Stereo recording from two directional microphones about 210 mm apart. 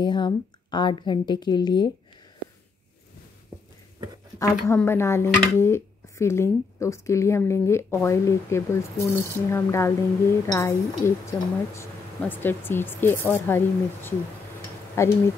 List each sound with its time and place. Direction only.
0.0 s a woman's voice: 20° left (ahead or behind)
4.4 s speech: 10° left (ahead or behind)